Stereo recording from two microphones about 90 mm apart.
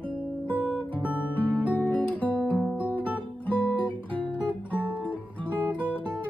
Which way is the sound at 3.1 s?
15° left (ahead or behind).